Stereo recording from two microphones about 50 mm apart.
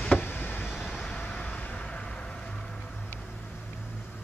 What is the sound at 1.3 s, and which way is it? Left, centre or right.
Vehicle, centre.